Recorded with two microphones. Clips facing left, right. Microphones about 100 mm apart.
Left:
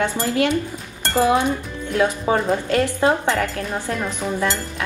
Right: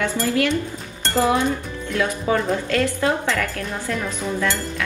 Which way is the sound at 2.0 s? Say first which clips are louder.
Left 2 dB; 30° left (ahead or behind).